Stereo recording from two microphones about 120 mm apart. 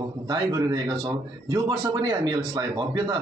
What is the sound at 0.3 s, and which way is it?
Speech, 35° right (ahead or behind).